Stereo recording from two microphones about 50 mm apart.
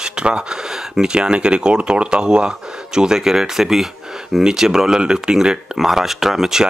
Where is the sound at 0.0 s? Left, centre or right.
Centre.